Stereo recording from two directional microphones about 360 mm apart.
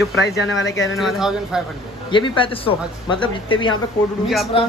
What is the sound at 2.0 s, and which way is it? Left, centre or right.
Speech, centre.